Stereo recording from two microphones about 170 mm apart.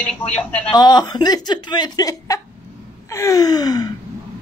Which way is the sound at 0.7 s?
25° left (ahead or behind).